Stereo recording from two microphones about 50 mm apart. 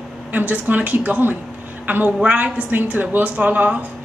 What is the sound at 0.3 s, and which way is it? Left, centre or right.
A woman's voice, right.